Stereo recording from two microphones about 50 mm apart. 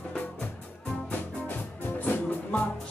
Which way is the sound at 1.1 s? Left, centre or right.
Left.